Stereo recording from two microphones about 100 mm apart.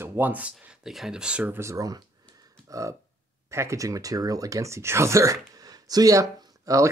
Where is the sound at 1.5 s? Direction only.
30° right (ahead or behind).